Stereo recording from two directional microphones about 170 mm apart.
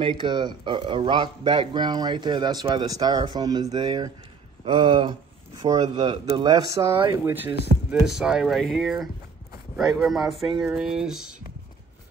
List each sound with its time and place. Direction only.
0.0 s speech: 30° right (ahead or behind); by 11.4 s 5° right (ahead or behind)